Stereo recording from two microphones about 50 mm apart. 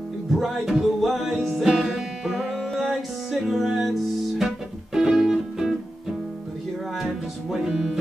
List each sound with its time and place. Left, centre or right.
0.3 s music: centre
2.7 s music: centre